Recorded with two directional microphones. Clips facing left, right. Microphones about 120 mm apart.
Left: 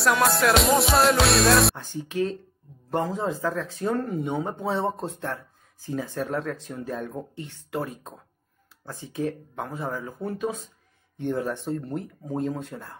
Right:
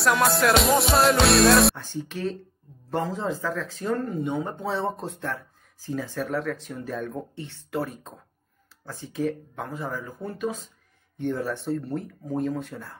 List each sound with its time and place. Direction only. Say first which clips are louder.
0.0 s music: even; centre (ahead or behind)
1.8 s speech: left 4 dB; 15° left (ahead or behind)